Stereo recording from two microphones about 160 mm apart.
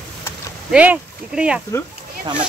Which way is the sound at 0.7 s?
5° right (ahead or behind).